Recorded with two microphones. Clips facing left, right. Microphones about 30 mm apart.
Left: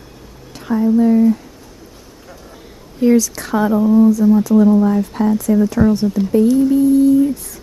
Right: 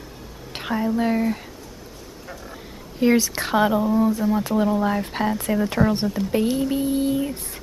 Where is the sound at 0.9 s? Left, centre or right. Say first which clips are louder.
Left 12 dB; right.